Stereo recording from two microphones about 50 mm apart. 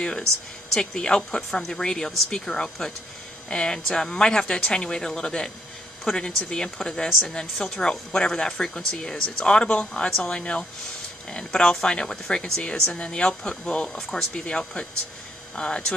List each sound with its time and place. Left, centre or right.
0.7 s speech: centre